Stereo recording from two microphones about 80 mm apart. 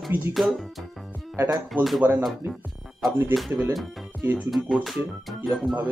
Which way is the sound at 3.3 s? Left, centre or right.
Centre.